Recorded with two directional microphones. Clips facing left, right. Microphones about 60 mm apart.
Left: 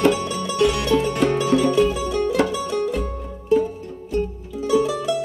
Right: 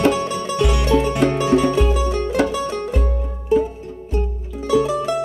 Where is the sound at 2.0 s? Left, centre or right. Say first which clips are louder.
Right 1 dB; right.